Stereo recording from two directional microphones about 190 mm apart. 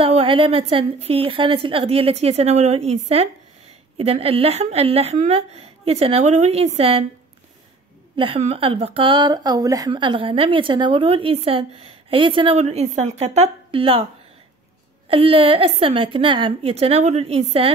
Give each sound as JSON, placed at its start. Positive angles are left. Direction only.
{"t": 0.0, "sound": "a woman's voice", "side_deg": -30}
{"t": 8.2, "sound": "speech", "side_deg": -30}
{"t": 15.0, "sound": "a woman's voice", "side_deg": -30}